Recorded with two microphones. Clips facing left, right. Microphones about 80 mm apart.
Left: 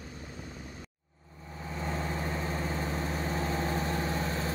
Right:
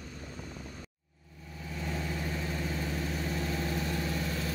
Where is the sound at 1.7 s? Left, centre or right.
Left.